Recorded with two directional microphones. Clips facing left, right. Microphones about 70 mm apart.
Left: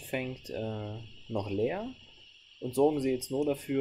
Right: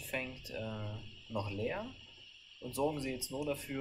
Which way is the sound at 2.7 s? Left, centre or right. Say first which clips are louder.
Left 9 dB; left.